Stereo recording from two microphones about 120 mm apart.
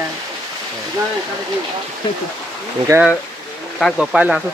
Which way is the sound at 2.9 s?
25° right (ahead or behind).